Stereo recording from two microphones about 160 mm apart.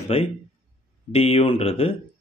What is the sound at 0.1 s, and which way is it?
Speech, 35° left (ahead or behind).